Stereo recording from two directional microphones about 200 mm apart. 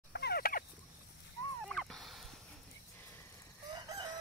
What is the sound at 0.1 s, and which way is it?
Turkey, 55° left (ahead or behind).